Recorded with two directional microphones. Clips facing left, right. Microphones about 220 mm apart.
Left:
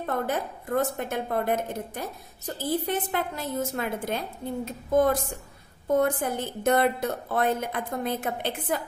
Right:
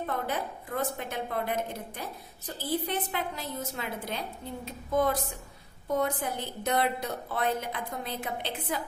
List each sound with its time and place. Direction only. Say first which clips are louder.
0.0 s a woman's voice: left 4 dB; 50° left (ahead or behind)
5.9 s a woman's voice: left 5 dB; 50° left (ahead or behind)